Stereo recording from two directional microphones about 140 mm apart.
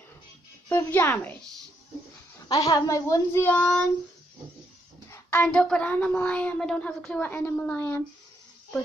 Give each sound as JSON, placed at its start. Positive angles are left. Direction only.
{"t": 0.7, "sound": "speech", "side_deg": 15}
{"t": 2.4, "sound": "a woman's voice", "side_deg": 25}
{"t": 3.4, "sound": "speech", "side_deg": 5}
{"t": 5.1, "sound": "speech", "side_deg": 15}